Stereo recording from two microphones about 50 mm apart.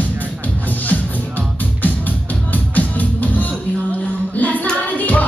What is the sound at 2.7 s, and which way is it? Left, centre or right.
Music, left.